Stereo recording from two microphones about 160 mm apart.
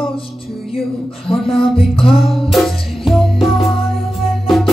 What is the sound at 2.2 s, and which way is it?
Music, centre (ahead or behind).